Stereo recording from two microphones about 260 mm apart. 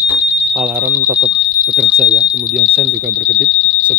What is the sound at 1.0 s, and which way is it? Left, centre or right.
Speech, right.